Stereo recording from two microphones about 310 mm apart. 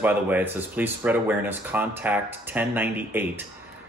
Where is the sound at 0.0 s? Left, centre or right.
Centre.